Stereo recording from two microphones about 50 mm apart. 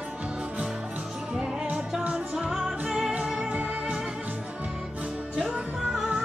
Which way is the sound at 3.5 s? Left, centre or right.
Right.